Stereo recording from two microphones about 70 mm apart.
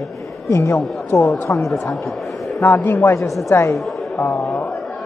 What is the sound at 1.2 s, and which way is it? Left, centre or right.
Speech, left.